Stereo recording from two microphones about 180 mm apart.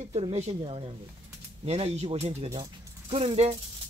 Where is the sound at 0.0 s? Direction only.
35° right (ahead or behind).